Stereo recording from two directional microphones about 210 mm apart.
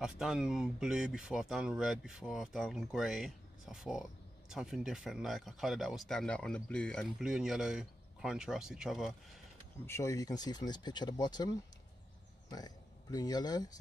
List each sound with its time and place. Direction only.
0.0 s speech: 5° right (ahead or behind)
9.8 s speech: 15° left (ahead or behind)